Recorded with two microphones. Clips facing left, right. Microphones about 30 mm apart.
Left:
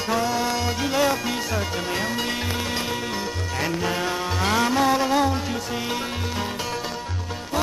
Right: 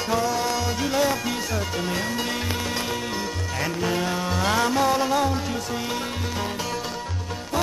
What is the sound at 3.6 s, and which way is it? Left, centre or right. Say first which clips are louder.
Music: even; centre.